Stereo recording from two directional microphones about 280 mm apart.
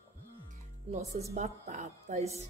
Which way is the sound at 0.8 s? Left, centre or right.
Right.